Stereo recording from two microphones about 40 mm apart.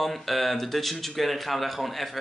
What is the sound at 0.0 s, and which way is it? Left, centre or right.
Speech, centre.